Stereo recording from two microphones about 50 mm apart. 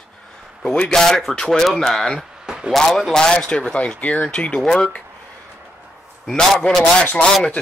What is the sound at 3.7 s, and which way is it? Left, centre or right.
Speech, left.